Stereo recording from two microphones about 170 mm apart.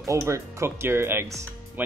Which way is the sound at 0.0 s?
20° right (ahead or behind).